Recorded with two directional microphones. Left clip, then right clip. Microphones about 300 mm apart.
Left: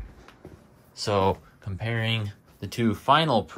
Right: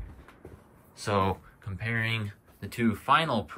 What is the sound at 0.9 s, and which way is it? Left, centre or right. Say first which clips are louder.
Speech: left 4 dB; centre.